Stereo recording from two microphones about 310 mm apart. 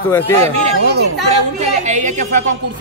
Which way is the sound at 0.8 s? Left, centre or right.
Right.